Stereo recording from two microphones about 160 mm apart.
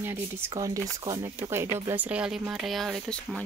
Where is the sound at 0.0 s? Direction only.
15° right (ahead or behind).